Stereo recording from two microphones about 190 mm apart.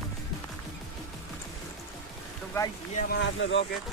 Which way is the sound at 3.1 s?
70° left (ahead or behind).